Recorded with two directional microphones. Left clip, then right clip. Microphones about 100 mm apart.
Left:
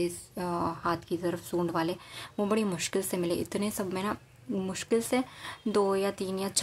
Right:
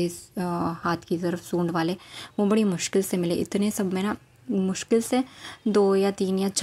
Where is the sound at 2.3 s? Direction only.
25° right (ahead or behind).